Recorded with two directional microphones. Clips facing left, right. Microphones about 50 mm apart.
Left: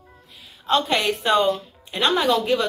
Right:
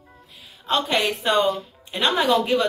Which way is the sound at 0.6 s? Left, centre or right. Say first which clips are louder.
Left 1 dB; centre.